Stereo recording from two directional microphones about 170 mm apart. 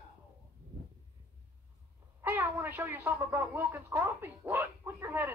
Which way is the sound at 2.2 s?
15° right (ahead or behind).